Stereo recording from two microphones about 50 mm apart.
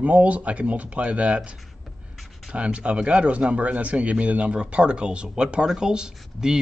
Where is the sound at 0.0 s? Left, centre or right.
Right.